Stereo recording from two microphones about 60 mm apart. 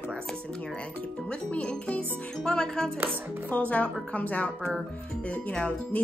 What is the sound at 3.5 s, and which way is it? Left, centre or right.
Speech, left.